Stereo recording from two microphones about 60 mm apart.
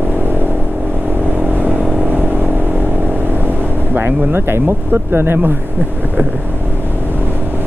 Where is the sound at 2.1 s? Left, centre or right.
Right.